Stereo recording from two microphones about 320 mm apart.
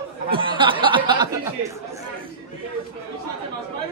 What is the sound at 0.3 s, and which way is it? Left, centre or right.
Speech, centre.